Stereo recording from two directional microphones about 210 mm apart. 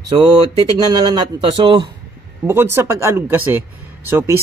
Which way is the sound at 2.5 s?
10° right (ahead or behind).